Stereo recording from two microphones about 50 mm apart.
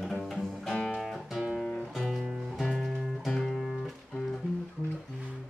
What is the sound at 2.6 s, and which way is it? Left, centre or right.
Music, centre.